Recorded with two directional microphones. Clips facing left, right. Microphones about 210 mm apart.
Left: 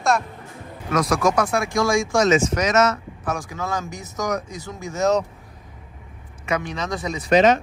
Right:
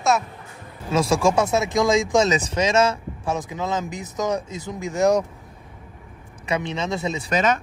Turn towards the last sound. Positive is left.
turn(degrees=-25)  # may be behind; listen again after turning